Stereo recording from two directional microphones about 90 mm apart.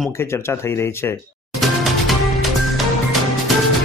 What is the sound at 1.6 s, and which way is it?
Music, centre (ahead or behind).